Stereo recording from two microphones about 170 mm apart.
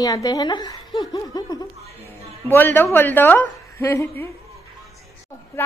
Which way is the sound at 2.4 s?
10° left (ahead or behind).